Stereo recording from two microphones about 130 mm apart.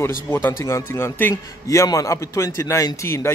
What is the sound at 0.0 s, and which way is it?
A man's voice, 20° left (ahead or behind).